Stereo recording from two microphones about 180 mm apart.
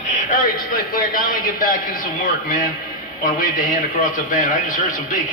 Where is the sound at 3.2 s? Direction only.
50° left (ahead or behind).